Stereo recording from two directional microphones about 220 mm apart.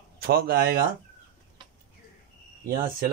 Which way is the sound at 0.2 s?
45° right (ahead or behind).